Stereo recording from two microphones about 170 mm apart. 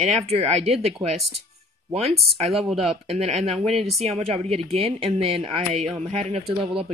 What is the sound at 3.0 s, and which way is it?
Speech, 35° right (ahead or behind).